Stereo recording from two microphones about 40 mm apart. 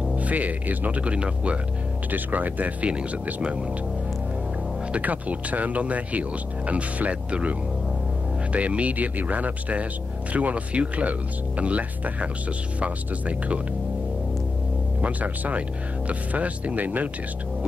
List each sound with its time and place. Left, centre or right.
0.1 s speech: right
1.0 s speech: right
2.0 s speech: right
4.9 s speech: right
15.0 s speech: right